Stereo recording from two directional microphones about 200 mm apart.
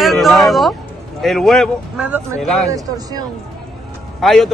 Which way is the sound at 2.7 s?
20° right (ahead or behind).